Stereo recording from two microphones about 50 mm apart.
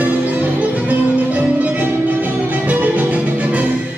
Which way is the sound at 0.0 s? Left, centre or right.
Right.